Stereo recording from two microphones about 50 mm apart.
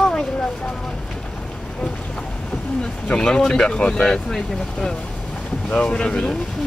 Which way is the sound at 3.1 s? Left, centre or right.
Centre.